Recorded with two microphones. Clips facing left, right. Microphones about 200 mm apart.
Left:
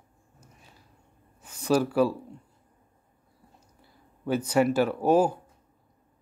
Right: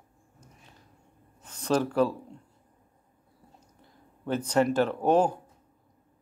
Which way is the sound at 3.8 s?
10° left (ahead or behind).